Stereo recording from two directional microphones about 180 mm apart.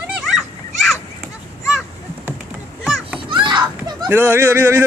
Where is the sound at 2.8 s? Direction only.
Centre (ahead or behind).